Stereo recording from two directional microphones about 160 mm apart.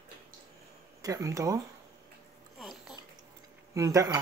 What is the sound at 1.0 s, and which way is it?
Speech, 20° right (ahead or behind).